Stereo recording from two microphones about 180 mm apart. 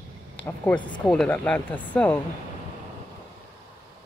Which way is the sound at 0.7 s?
25° left (ahead or behind).